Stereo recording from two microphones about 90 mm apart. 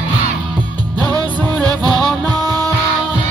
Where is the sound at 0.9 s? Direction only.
45° right (ahead or behind).